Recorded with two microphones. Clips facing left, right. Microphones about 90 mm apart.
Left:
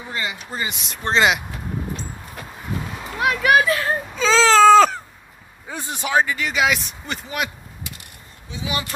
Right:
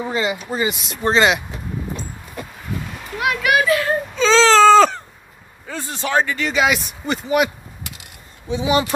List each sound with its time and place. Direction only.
0.0 s speech: 20° right (ahead or behind)
0.7 s speech: centre (ahead or behind)
3.2 s speech: 35° left (ahead or behind)
4.1 s baby cry: 5° left (ahead or behind)
5.7 s speech: 15° left (ahead or behind); by 7.4 s 5° right (ahead or behind)
8.5 s speech: 25° right (ahead or behind)